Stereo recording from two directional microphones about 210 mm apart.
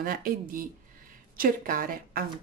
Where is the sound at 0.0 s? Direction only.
40° right (ahead or behind).